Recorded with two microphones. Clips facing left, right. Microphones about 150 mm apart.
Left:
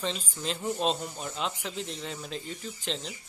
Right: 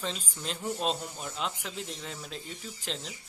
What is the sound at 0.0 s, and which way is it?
Speech, centre (ahead or behind).